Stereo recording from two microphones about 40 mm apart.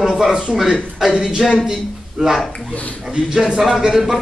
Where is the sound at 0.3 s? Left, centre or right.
Right.